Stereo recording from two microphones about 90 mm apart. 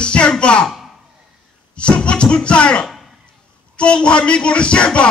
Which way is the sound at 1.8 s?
10° left (ahead or behind).